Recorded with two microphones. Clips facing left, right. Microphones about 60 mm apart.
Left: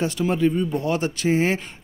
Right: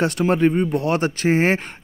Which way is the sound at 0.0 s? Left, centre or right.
Right.